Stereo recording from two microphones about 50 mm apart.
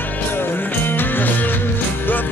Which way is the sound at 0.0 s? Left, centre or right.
Left.